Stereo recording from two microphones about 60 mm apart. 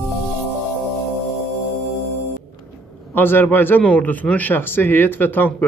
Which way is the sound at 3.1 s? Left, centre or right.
Left.